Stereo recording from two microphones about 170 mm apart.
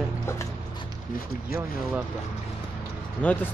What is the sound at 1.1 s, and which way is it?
Speech, 60° left (ahead or behind).